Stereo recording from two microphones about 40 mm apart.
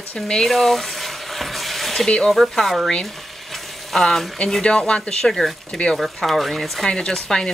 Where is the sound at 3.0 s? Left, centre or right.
Centre.